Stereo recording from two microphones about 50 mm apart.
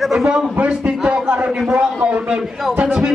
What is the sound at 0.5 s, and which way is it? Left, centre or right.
Speech, right.